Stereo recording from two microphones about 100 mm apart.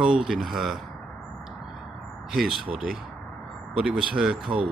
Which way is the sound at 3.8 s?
10° right (ahead or behind).